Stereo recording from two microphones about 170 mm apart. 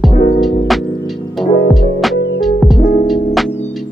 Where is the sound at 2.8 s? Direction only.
60° left (ahead or behind).